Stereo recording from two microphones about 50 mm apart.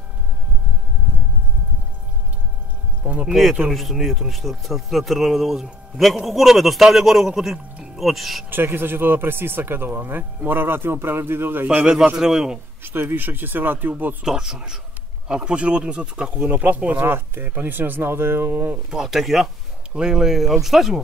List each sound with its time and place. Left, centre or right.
3.0 s a sound: right
3.3 s speech: centre
7.5 s music: centre
8.0 s speech: centre
8.5 s speech: right
12.2 s speech: centre
12.8 s speech: right
14.2 s speech: centre; by 17.0 s right
17.0 s speech: right
18.9 s speech: centre
19.9 s speech: centre